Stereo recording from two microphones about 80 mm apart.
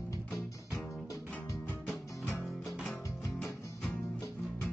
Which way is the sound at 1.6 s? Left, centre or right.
Centre.